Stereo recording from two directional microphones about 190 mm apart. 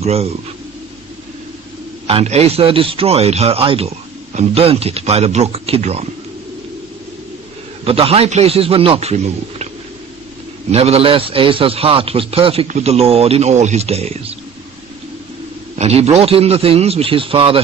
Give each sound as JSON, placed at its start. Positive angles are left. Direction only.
{"t": 0.0, "sound": "speech", "side_deg": -35}
{"t": 2.0, "sound": "a man's voice", "side_deg": -30}
{"t": 7.8, "sound": "a man's voice", "side_deg": -30}
{"t": 10.7, "sound": "a man's voice", "side_deg": -30}
{"t": 15.8, "sound": "a man's voice", "side_deg": -35}